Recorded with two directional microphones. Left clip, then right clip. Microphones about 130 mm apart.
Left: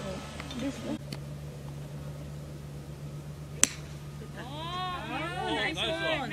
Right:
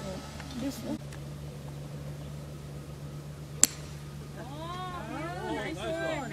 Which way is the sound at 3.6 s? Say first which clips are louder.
Even; centre (ahead or behind).